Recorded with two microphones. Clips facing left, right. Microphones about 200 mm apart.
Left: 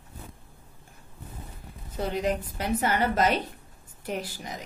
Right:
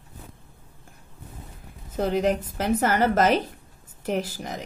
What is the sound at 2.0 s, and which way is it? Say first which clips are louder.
A woman's voice: right 5 dB; 45° right (ahead or behind).